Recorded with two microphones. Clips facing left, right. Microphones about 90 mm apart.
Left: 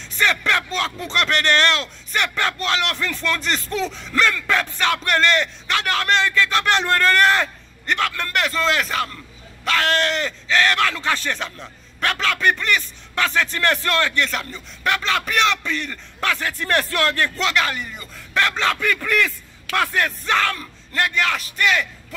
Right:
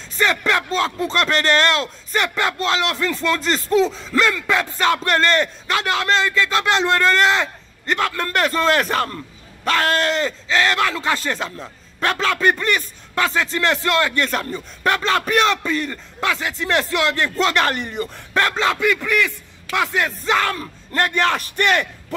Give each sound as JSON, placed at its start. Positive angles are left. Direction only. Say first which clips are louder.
{"t": 0.7, "sound": "speech", "louder": "right 5 dB", "side_deg": -30}
{"t": 4.2, "sound": "speech", "louder": "right 1 dB", "side_deg": -10}
{"t": 4.6, "sound": "speech", "louder": "right 3 dB", "side_deg": -25}
{"t": 7.8, "sound": "speech", "louder": "right 2 dB", "side_deg": -30}
{"t": 8.6, "sound": "speech", "louder": "right 3 dB", "side_deg": -45}
{"t": 14.1, "sound": "speech", "louder": "right 2 dB", "side_deg": -35}
{"t": 15.7, "sound": "speech", "louder": "right 4 dB", "side_deg": -20}
{"t": 16.5, "sound": "speech", "louder": "right 1 dB", "side_deg": -5}
{"t": 17.4, "sound": "speech", "louder": "right 3 dB", "side_deg": -40}
{"t": 18.6, "sound": "speech", "louder": "right 3 dB", "side_deg": -10}
{"t": 20.3, "sound": "speech", "louder": "right 1 dB", "side_deg": -25}